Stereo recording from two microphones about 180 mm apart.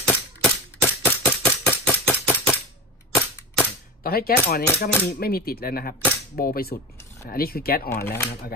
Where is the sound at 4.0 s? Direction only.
55° left (ahead or behind).